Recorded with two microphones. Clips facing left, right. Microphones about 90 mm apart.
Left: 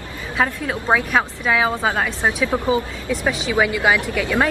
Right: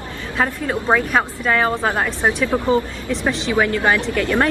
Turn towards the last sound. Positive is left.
turn(degrees=10)  # may be behind; listen again after turning